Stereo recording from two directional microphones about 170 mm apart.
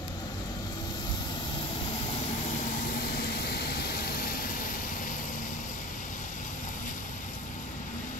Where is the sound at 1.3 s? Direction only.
30° left (ahead or behind); by 5.3 s 50° left (ahead or behind).